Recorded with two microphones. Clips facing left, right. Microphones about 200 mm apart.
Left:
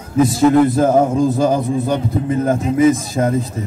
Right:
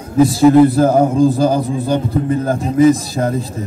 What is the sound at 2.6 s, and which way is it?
Speech, 35° right (ahead or behind).